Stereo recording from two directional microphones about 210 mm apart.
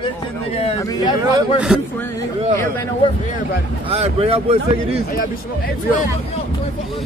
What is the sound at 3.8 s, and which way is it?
Speech, 30° right (ahead or behind).